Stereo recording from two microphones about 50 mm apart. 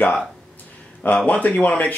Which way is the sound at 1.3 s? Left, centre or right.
Left.